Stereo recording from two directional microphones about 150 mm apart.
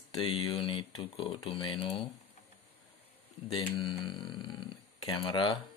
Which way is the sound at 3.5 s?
35° left (ahead or behind).